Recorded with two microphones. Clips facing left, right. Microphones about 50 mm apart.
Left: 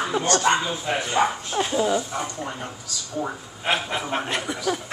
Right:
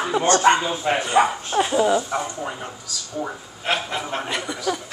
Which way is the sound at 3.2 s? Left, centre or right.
Centre.